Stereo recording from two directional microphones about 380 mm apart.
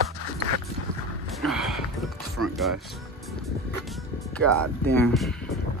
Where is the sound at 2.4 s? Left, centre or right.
Right.